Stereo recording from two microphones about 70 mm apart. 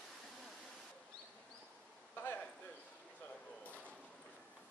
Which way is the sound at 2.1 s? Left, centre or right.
Left.